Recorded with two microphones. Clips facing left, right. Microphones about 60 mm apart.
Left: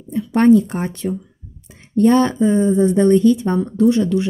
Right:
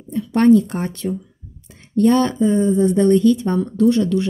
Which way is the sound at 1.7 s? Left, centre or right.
Left.